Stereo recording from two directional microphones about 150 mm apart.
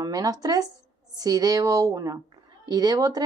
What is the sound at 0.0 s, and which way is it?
Speech, 25° right (ahead or behind).